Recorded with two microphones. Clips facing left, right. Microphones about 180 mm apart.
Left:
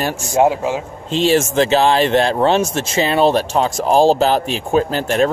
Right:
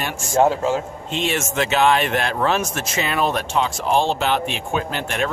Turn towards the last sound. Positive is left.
turn(degrees=35)  # may be behind; listen again after turning